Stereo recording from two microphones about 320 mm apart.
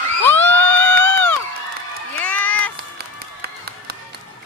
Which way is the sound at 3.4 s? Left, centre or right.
Right.